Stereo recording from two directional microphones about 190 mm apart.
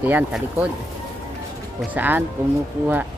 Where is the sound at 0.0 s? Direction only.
5° right (ahead or behind).